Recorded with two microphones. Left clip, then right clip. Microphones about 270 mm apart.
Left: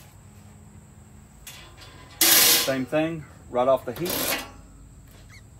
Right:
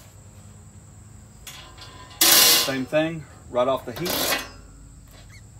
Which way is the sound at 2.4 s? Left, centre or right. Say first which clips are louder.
Right 2 dB; centre.